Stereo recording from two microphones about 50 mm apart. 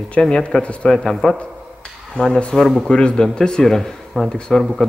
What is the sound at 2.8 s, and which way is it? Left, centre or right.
Speech, centre.